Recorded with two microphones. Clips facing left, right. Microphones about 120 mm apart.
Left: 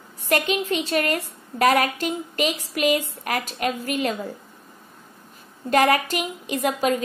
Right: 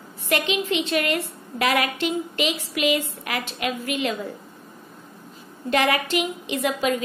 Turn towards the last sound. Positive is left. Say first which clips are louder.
# left 1 dB
turn(degrees=40)  # may be behind; listen again after turning